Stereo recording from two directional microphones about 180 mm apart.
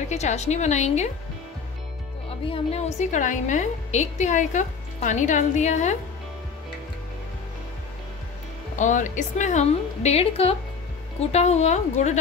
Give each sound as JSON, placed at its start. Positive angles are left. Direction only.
{"t": 0.1, "sound": "a woman's voice", "side_deg": 40}
{"t": 2.4, "sound": "a woman's voice", "side_deg": 30}
{"t": 8.7, "sound": "a woman's voice", "side_deg": 45}